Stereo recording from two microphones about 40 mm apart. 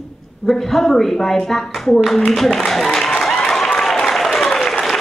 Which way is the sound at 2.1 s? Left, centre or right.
Centre.